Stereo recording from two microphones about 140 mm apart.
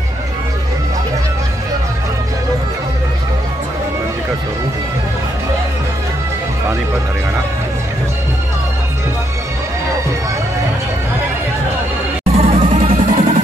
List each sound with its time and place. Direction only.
12.4 s music: 50° right (ahead or behind); by 13.4 s 70° right (ahead or behind)